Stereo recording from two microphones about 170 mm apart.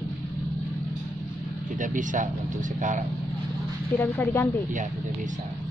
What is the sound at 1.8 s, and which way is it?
Speech, 50° right (ahead or behind).